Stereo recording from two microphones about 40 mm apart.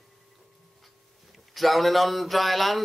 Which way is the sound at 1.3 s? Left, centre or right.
Centre.